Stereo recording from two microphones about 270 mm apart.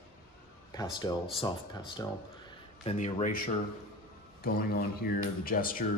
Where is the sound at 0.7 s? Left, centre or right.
Centre.